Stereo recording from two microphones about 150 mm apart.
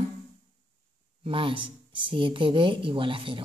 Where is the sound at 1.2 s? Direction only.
35° right (ahead or behind).